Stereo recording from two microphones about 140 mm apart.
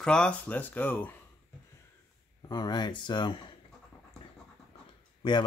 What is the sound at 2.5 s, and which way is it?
Speech, 30° left (ahead or behind).